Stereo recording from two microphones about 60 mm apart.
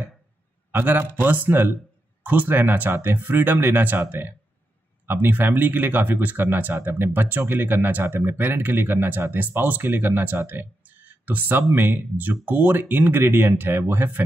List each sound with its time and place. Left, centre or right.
0.7 s speech: right
5.0 s speech: right